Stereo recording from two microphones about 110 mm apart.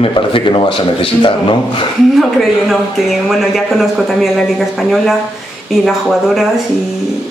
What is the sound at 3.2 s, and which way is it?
Speech, centre (ahead or behind).